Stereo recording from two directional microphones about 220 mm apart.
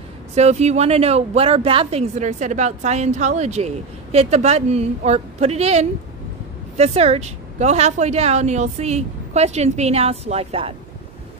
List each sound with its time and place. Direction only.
0.3 s speech: 30° right (ahead or behind)